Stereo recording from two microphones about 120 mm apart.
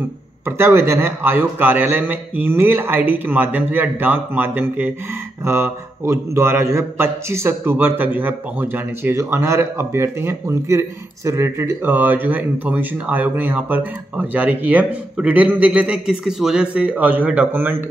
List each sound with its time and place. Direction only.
0.5 s a man's voice: 20° right (ahead or behind)